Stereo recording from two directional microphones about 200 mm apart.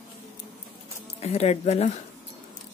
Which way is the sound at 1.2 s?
30° left (ahead or behind).